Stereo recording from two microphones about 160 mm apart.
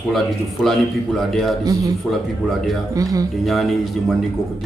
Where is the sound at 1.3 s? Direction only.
Centre (ahead or behind).